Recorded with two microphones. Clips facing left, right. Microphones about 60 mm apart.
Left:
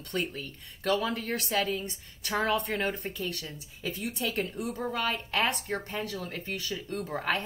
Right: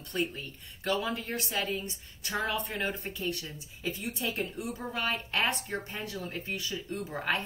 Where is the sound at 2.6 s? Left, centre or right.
Left.